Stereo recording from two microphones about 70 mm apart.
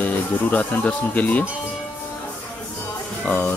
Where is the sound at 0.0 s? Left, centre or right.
Left.